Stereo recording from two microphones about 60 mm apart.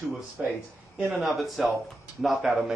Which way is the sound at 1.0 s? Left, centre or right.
Centre.